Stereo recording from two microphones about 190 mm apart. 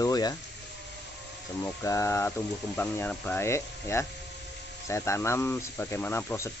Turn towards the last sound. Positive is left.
turn(degrees=15)  # may be behind; listen again after turning